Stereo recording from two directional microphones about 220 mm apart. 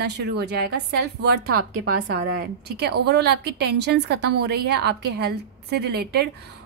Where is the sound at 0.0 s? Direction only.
50° right (ahead or behind).